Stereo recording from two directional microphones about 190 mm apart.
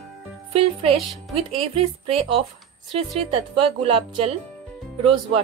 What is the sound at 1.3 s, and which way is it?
Speech, 30° right (ahead or behind).